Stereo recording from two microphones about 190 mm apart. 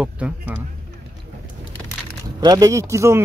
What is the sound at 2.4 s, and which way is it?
Speech, 20° right (ahead or behind).